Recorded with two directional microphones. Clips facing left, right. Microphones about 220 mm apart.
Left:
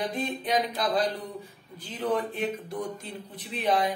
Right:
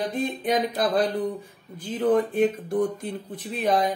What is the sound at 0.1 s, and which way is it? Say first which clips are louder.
Speech: right 4 dB; 50° right (ahead or behind).